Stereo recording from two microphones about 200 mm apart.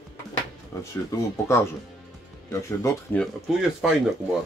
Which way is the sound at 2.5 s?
15° left (ahead or behind).